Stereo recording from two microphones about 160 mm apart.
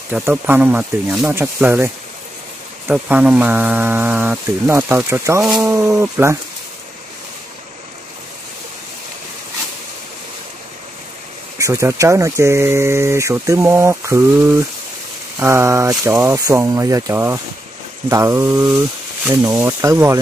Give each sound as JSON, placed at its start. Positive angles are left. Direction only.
{"t": 0.1, "sound": "speech", "side_deg": -10}
{"t": 2.9, "sound": "speech", "side_deg": -10}
{"t": 11.5, "sound": "speech", "side_deg": -20}
{"t": 18.1, "sound": "a sound", "side_deg": -15}
{"t": 18.8, "sound": "speech", "side_deg": -15}